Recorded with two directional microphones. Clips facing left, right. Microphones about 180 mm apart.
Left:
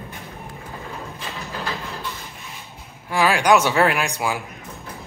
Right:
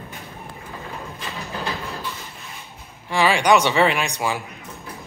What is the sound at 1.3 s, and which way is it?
Train, 15° right (ahead or behind).